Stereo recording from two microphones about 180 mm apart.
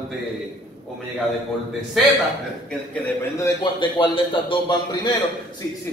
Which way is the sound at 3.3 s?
20° left (ahead or behind).